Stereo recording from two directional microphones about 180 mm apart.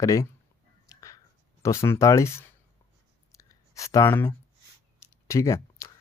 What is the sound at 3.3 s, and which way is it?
Clicking, 20° left (ahead or behind).